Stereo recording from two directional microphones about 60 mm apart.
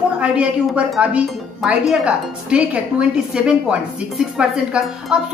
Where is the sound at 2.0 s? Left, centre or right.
Centre.